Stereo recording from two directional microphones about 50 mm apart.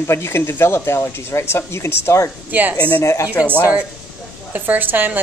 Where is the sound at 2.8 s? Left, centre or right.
Left.